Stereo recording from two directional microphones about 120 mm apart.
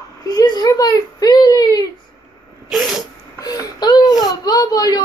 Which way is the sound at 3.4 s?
30° left (ahead or behind).